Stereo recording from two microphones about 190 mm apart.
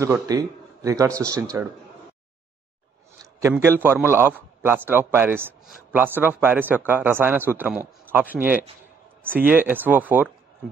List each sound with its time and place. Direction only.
0.0 s a man's voice: 15° right (ahead or behind)
3.3 s a man's voice: 15° right (ahead or behind)